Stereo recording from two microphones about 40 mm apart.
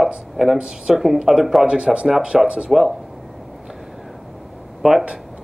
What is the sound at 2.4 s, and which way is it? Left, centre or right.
Speech, right.